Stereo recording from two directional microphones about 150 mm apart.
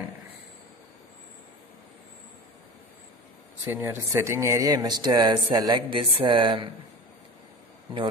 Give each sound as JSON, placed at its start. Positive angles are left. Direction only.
{"t": 3.6, "sound": "speech", "side_deg": -15}